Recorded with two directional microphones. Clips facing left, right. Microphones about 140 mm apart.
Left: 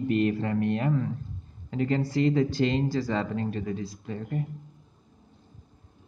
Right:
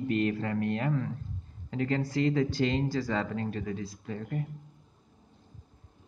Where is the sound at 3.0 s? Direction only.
25° left (ahead or behind).